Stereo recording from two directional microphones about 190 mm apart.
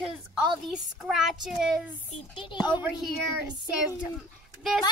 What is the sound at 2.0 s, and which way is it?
Speech, 25° left (ahead or behind).